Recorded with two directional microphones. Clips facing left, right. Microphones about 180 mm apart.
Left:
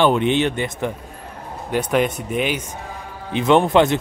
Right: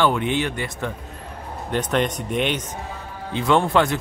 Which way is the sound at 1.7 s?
5° left (ahead or behind).